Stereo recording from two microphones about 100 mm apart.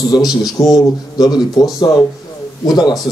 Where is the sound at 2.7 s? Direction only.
45° left (ahead or behind).